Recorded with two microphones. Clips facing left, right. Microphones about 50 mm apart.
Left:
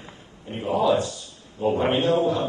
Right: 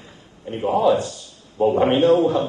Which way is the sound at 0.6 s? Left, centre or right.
Right.